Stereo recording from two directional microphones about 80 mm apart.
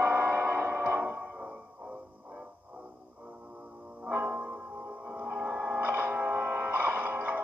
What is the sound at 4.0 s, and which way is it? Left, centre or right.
Music, centre.